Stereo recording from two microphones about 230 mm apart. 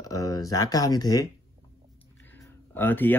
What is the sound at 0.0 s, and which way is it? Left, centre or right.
Speech, centre.